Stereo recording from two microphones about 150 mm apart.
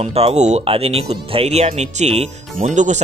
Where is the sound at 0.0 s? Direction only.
45° right (ahead or behind).